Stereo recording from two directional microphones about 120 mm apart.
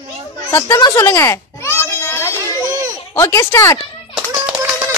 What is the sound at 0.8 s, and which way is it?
Speech, 35° left (ahead or behind).